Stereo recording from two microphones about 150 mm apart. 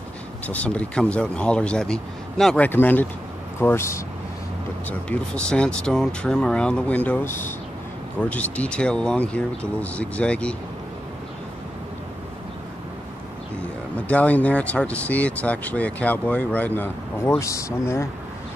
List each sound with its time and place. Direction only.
0.5 s speech: 10° left (ahead or behind)
13.9 s speech: 10° left (ahead or behind)